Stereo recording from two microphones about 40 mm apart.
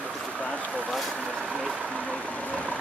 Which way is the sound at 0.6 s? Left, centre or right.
Right.